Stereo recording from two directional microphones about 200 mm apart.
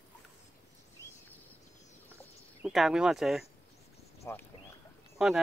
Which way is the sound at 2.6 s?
Centre (ahead or behind).